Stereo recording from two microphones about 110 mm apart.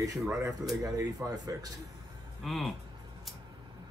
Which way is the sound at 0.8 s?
30° right (ahead or behind).